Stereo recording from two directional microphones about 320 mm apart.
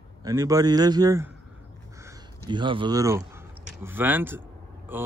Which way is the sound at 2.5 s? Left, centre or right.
Centre.